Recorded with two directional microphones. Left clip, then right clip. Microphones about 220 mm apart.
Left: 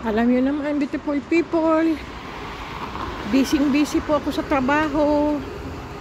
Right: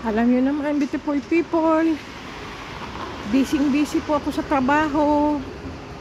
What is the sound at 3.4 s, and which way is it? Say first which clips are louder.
Speech: left 1 dB; 40° left (ahead or behind).